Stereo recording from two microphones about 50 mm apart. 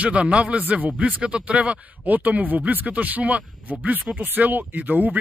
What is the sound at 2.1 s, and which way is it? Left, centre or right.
Speech, right.